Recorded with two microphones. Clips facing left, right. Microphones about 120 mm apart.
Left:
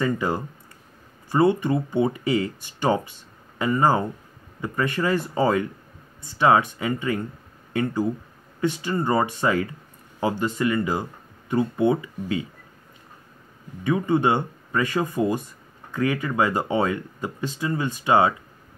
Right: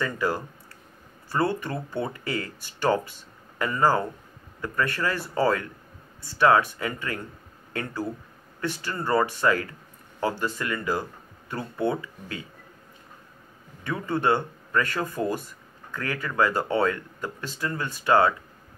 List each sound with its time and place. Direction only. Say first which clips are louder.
0.0 s speech: left 3 dB; 20° left (ahead or behind)
13.8 s speech: left 4 dB; 15° left (ahead or behind)